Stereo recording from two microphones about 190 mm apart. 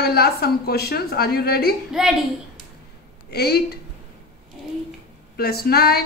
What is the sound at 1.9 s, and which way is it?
Speech, centre (ahead or behind).